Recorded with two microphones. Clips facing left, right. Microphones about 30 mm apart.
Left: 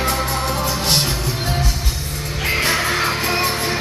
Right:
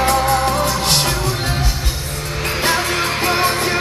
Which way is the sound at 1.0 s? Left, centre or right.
Centre.